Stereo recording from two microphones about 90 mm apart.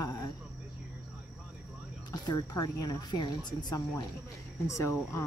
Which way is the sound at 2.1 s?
50° left (ahead or behind).